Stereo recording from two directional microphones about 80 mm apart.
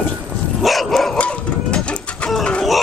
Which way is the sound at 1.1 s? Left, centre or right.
Centre.